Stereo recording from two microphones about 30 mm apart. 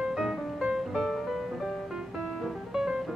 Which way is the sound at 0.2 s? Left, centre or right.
Right.